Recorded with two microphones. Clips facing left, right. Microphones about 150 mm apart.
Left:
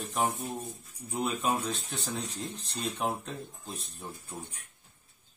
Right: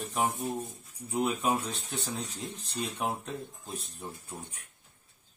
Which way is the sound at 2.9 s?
5° right (ahead or behind).